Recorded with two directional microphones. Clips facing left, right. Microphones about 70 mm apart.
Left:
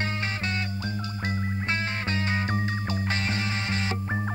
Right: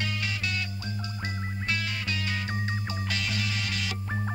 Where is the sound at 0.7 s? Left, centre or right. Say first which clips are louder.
Left 4 dB; left.